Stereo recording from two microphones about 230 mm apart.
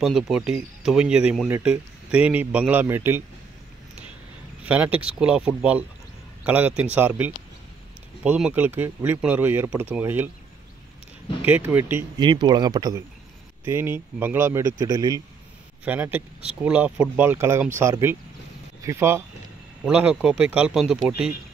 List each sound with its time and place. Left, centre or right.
0.0 s speech: centre
4.6 s speech: centre
11.4 s speech: centre